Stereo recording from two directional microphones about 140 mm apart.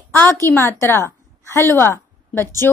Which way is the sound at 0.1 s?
10° left (ahead or behind).